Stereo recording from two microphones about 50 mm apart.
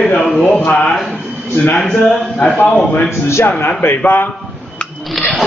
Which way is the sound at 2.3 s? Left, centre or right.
Left.